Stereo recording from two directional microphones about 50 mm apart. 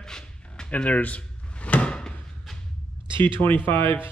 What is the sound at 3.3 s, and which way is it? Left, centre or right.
Speech, left.